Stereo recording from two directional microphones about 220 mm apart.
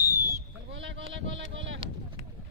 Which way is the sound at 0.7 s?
60° right (ahead or behind).